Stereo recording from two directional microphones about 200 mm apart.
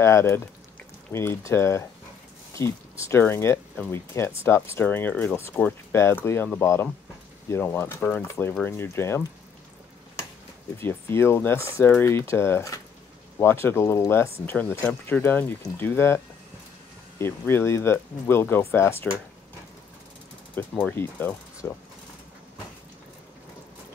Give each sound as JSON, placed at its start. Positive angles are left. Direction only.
{"t": 0.0, "sound": "speech", "side_deg": 15}
{"t": 10.8, "sound": "speech", "side_deg": 10}
{"t": 17.2, "sound": "speech", "side_deg": 10}
{"t": 20.5, "sound": "speech", "side_deg": 10}